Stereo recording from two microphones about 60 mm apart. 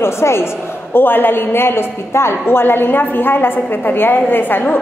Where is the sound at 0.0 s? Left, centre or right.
Left.